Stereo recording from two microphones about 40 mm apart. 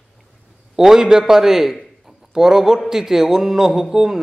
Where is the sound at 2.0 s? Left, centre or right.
Centre.